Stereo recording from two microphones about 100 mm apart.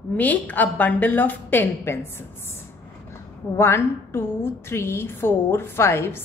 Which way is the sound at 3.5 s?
25° left (ahead or behind).